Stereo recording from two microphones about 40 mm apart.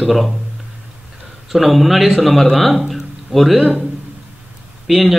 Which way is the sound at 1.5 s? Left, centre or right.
Centre.